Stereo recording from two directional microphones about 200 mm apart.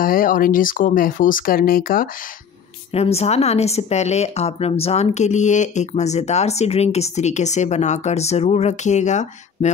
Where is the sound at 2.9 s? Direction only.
30° left (ahead or behind).